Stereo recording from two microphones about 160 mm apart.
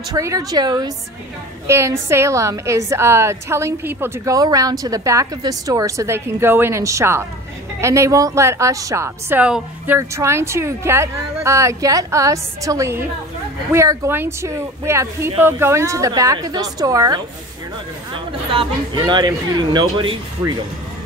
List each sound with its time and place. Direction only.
0.1 s a woman's voice: 20° right (ahead or behind)
18.5 s a woman's voice: 30° right (ahead or behind)